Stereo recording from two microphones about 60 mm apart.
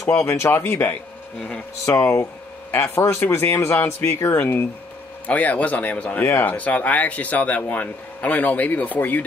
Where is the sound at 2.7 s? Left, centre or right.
Left.